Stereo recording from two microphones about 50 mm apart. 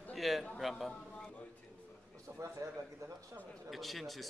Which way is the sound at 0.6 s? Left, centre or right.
Centre.